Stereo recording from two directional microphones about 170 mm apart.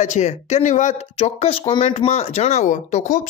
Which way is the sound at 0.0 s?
45° left (ahead or behind).